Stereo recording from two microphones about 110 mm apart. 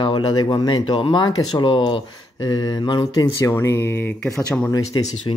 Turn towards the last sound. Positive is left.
turn(degrees=40)  # may be behind; listen again after turning